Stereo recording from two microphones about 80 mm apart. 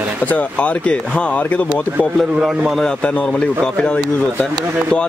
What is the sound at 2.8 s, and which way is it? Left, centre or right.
Speech, centre.